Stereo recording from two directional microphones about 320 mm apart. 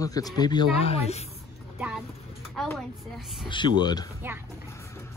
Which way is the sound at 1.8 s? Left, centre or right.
Centre.